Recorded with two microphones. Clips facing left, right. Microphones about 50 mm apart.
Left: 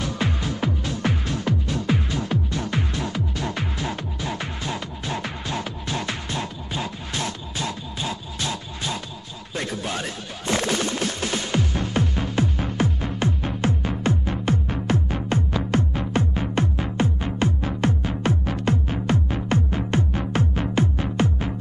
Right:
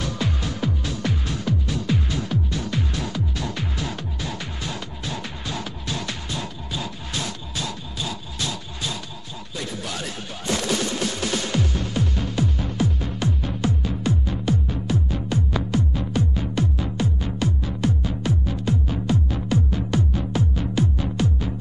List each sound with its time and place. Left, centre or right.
0.2 s music: left
12.4 s music: left